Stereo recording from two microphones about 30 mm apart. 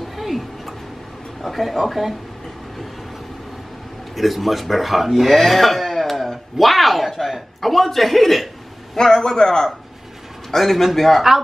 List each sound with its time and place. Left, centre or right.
0.0 s tick-tock: centre
1.4 s a man's voice: centre
4.1 s a man's voice: centre
8.9 s a man's voice: centre
10.6 s a man's voice: centre